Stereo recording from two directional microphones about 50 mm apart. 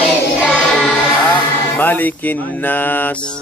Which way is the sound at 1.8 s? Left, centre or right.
Left.